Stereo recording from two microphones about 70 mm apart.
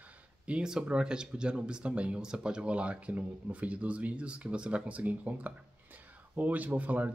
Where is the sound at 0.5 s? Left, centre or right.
Centre.